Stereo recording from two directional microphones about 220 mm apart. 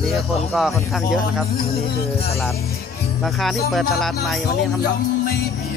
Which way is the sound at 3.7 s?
Centre (ahead or behind).